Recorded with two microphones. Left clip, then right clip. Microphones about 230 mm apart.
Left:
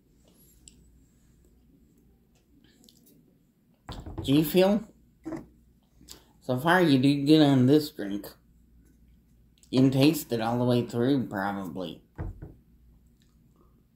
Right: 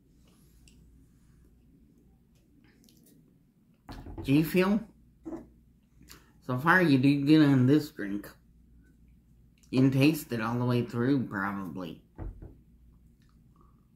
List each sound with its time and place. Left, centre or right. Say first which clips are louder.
4.2 s speech: left 4 dB; centre
6.0 s speech: left 6 dB; centre
9.7 s speech: left 3 dB; centre